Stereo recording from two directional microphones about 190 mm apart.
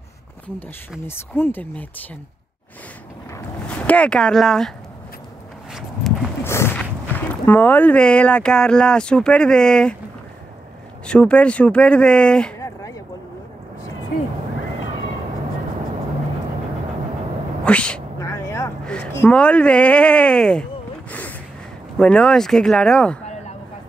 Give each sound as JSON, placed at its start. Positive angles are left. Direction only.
{"t": 0.6, "sound": "speech", "side_deg": 10}
{"t": 3.6, "sound": "speech", "side_deg": 5}
{"t": 5.7, "sound": "walk", "side_deg": 0}
{"t": 6.4, "sound": "speech", "side_deg": 15}
{"t": 11.1, "sound": "speech", "side_deg": 5}
{"t": 12.5, "sound": "a sound", "side_deg": 15}
{"t": 17.6, "sound": "speech", "side_deg": 5}
{"t": 18.2, "sound": "a sound", "side_deg": 15}
{"t": 21.1, "sound": "gasp", "side_deg": 10}
{"t": 21.9, "sound": "speech", "side_deg": 5}